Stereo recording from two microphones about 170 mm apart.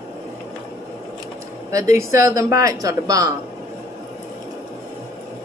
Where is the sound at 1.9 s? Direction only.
15° right (ahead or behind).